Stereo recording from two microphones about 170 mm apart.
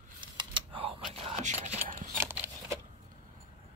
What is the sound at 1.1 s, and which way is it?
Whispering, 35° right (ahead or behind).